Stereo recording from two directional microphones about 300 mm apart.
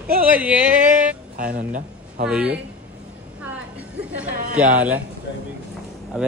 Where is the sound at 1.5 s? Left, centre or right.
Right.